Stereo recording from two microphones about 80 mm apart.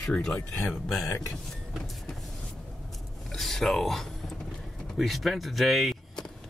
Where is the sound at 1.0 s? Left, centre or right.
Left.